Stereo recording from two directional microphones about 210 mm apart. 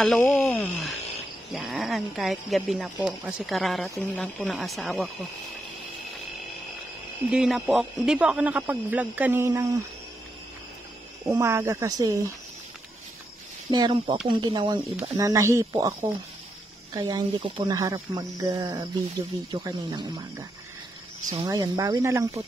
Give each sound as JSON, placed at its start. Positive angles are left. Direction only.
{"t": 0.0, "sound": "speech", "side_deg": 5}
{"t": 7.2, "sound": "speech", "side_deg": 0}
{"t": 11.2, "sound": "speech", "side_deg": -10}
{"t": 13.7, "sound": "speech", "side_deg": -20}
{"t": 21.3, "sound": "speech", "side_deg": -20}